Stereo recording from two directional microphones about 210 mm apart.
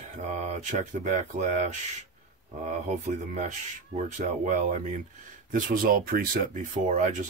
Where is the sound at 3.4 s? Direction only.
35° right (ahead or behind).